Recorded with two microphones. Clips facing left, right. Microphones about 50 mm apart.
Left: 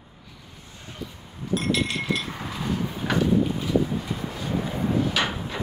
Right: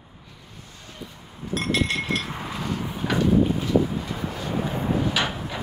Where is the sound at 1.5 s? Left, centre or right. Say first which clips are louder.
Even; right.